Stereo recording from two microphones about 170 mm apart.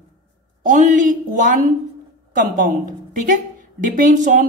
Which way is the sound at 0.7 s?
50° right (ahead or behind).